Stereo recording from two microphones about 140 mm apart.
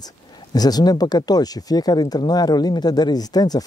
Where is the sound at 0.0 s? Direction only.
30° left (ahead or behind).